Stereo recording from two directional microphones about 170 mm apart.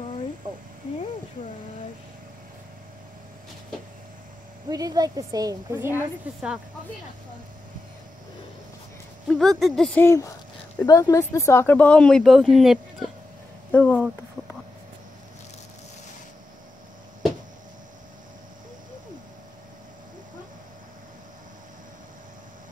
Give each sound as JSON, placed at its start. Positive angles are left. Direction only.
{"t": 4.6, "sound": "a woman's voice", "side_deg": -20}
{"t": 9.3, "sound": "speech", "side_deg": 0}
{"t": 10.0, "sound": "speech", "side_deg": 20}